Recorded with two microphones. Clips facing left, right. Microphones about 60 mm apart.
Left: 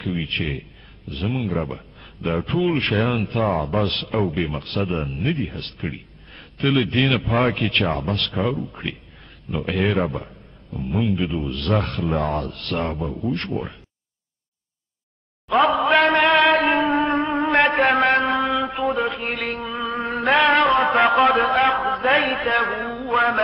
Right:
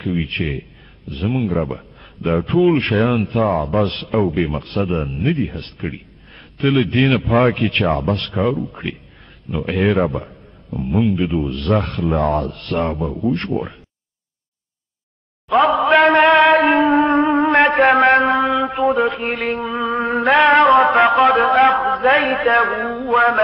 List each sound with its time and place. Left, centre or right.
0.0 s a man's voice: centre
15.4 s a sound: centre
16.6 s music: centre
17.6 s a sound: centre
18.2 s mantra: centre
19.0 s a sound: centre
19.4 s music: centre
20.9 s a man's voice: centre
23.0 s mantra: centre